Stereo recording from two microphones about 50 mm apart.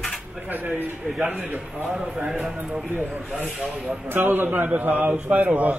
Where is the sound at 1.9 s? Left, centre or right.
Centre.